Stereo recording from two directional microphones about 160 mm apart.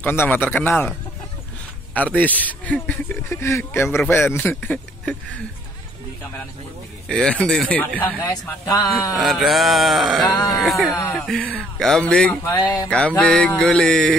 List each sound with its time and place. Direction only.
0.0 s a man's voice: 15° left (ahead or behind)
2.0 s a man's voice: 10° left (ahead or behind)
7.1 s a man's voice: 5° left (ahead or behind)
9.2 s speech: centre (ahead or behind)
10.2 s speech: 20° left (ahead or behind)
10.6 s speech: centre (ahead or behind)
10.9 s speech: 20° left (ahead or behind)
11.1 s speech: 5° left (ahead or behind)
12.5 s speech: 25° left (ahead or behind)
12.8 s speech: 5° left (ahead or behind)